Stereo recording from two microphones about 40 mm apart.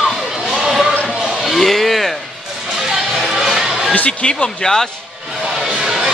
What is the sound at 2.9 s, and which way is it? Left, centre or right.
Music, centre.